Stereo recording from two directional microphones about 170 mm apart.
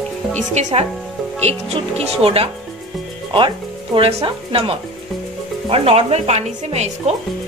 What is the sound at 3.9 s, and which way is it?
A woman's voice, 35° right (ahead or behind).